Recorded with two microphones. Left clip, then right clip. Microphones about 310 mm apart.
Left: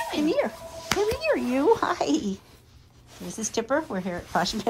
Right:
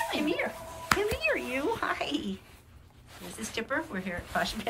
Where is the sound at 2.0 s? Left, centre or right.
Centre.